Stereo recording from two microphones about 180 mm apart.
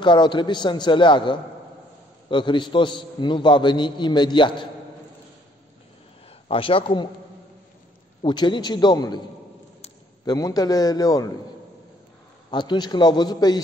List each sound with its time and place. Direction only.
0.0 s a man's voice: 25° left (ahead or behind)
6.5 s a man's voice: 30° left (ahead or behind)
8.2 s a man's voice: 25° left (ahead or behind)
10.2 s a man's voice: 20° left (ahead or behind)
12.4 s a man's voice: 25° left (ahead or behind)